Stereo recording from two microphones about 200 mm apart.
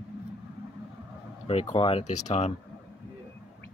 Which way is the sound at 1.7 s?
30° left (ahead or behind).